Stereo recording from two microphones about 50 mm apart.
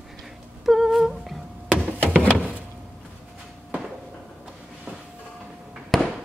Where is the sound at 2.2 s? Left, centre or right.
Left.